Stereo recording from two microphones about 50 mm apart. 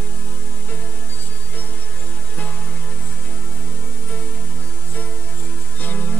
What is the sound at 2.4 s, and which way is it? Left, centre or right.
Music, left.